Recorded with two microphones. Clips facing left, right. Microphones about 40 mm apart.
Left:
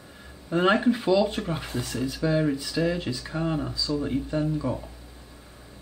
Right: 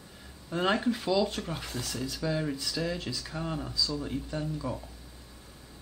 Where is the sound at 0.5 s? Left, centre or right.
Left.